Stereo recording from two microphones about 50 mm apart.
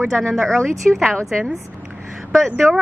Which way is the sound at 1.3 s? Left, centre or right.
Centre.